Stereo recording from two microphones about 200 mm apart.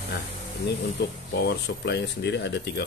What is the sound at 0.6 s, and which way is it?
Speech, 60° left (ahead or behind).